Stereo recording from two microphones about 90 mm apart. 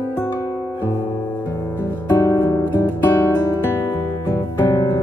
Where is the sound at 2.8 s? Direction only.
30° left (ahead or behind).